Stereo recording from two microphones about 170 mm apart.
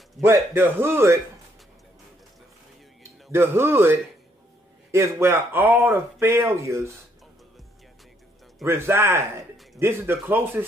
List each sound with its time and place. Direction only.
0.2 s speech: 15° right (ahead or behind)
3.3 s speech: 15° right (ahead or behind)
8.6 s speech: 15° right (ahead or behind)